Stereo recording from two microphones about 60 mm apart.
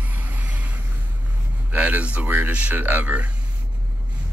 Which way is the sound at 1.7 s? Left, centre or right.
Right.